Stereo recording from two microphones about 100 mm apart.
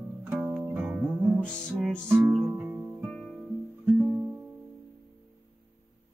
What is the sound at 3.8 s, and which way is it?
Music, 15° right (ahead or behind).